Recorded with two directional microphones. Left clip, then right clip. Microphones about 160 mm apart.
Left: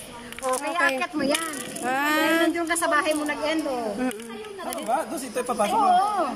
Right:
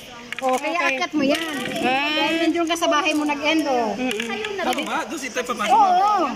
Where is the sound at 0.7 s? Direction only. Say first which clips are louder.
Right 2 dB; 20° right (ahead or behind).